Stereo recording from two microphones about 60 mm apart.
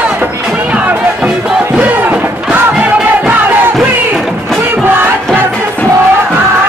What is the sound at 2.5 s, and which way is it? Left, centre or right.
Music, right.